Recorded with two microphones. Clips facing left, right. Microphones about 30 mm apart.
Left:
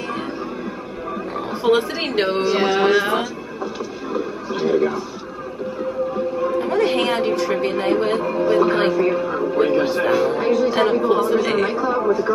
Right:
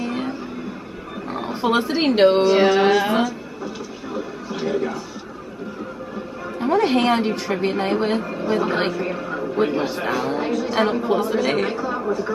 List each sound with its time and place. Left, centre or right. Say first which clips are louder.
0.0 s music: right 1 dB; centre
1.3 s speech: left 2 dB; centre
4.1 s television: left 4 dB; centre
6.6 s speech: right 4 dB; centre
12.0 s speech: left 5 dB; centre